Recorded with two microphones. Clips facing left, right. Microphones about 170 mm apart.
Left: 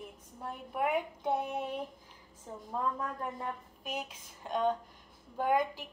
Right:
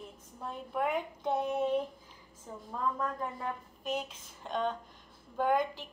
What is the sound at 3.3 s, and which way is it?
Speech, 10° left (ahead or behind).